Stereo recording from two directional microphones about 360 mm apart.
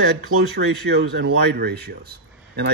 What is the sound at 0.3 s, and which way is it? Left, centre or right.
A man's voice, right.